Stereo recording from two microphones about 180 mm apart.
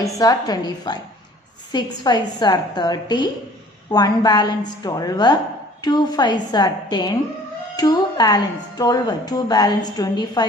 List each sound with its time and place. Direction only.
0.0 s speech: 20° left (ahead or behind)